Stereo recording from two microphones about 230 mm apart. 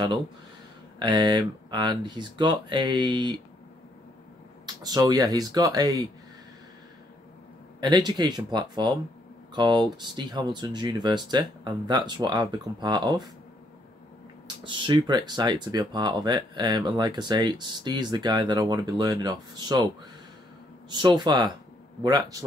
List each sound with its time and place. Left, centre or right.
0.9 s speech: centre
4.8 s speech: centre
7.8 s speech: centre
14.6 s speech: right
20.9 s speech: centre